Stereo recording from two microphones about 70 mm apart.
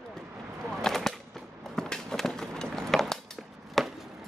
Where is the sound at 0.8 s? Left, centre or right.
Centre.